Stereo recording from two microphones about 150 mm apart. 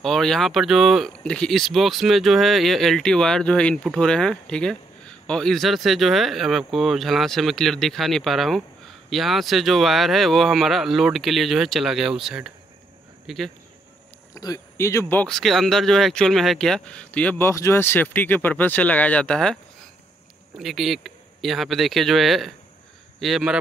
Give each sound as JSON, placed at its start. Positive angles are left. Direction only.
{"t": 0.0, "sound": "speech", "side_deg": 0}
{"t": 14.3, "sound": "speech", "side_deg": 25}
{"t": 15.2, "sound": "speech", "side_deg": 0}